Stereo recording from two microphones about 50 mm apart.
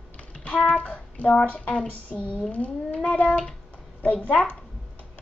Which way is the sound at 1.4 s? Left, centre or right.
Left.